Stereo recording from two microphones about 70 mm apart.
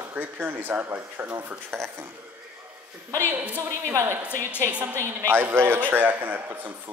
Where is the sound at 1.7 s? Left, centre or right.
Right.